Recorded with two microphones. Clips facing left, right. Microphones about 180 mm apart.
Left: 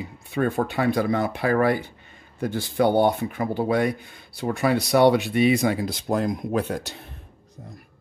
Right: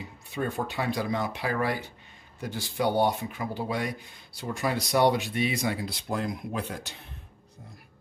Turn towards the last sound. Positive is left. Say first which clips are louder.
# left 8 dB
turn(degrees=45)  # may be behind; listen again after turning